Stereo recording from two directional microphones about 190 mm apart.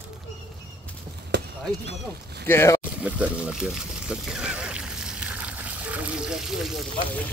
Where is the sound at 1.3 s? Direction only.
60° right (ahead or behind).